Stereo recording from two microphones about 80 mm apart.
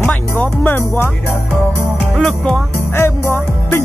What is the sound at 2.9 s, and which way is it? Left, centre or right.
Music, left.